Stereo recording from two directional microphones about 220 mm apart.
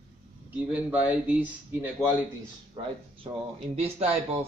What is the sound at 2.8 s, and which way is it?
Speech, 20° right (ahead or behind).